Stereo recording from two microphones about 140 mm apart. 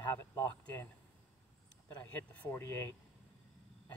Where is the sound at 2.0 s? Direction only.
15° left (ahead or behind).